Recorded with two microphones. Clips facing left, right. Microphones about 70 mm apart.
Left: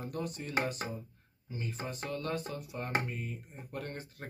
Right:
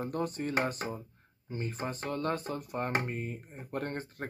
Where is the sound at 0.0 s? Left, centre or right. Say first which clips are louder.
Right 5 dB; right.